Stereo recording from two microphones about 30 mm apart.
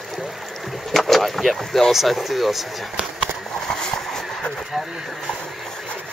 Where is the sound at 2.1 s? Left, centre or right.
Centre.